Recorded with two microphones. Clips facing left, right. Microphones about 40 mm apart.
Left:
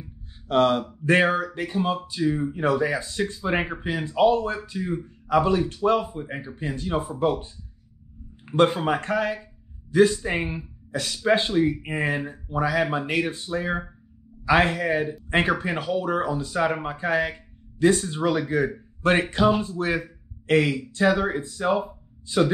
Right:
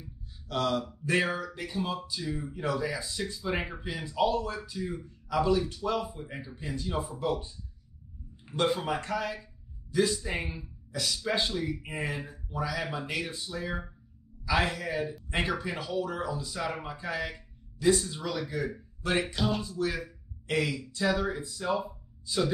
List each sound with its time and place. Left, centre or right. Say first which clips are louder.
0.5 s a man's voice: left 9 dB; left
19.2 s speech: left 10 dB; left